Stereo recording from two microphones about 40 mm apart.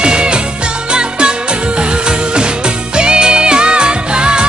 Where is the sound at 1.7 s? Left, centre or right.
Right.